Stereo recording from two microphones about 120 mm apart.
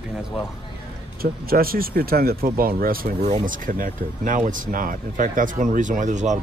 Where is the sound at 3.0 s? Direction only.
90° right.